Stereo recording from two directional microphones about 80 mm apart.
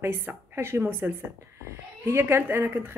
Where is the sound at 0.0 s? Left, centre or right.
Right.